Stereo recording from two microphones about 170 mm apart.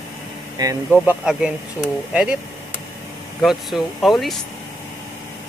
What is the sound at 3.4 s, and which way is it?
Speech, centre (ahead or behind).